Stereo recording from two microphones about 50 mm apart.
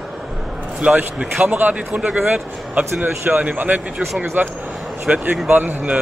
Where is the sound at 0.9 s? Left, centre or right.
Right.